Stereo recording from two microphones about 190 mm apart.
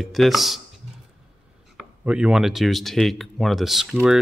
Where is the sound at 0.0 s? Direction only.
Centre (ahead or behind).